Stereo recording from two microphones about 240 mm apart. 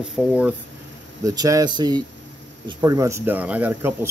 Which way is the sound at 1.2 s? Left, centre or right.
Centre.